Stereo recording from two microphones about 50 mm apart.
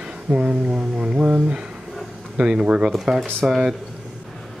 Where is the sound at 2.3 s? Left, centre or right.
Right.